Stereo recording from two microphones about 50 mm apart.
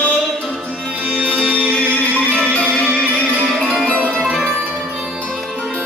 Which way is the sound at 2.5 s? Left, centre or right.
Left.